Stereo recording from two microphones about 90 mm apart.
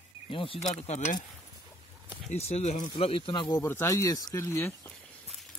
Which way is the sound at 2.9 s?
85° left.